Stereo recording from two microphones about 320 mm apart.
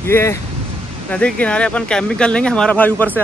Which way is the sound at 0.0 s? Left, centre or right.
Centre.